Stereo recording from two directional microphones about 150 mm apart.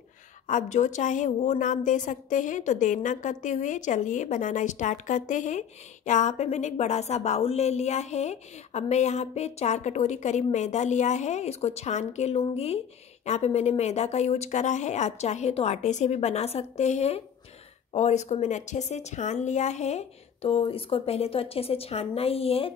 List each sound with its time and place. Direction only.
0.5 s a woman's voice: 55° left (ahead or behind)